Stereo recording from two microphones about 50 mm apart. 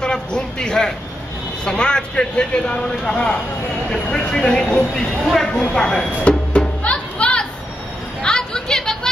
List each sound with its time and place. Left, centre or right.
0.0 s a man's voice: centre
5.2 s speech: centre
5.8 s chopping: centre
6.8 s music: left
8.2 s a sound: centre